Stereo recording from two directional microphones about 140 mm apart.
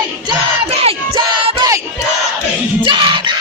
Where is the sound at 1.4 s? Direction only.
40° right (ahead or behind).